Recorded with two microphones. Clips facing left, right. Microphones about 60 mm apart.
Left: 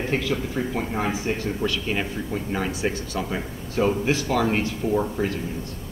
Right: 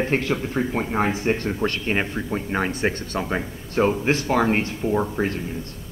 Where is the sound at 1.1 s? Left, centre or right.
Right.